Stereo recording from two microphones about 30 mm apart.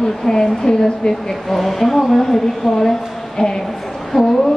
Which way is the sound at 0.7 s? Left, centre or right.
Left.